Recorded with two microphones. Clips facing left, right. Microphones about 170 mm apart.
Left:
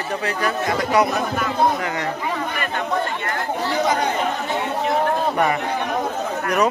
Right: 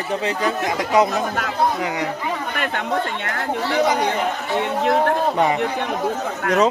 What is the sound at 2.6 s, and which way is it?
Speech, 90° right.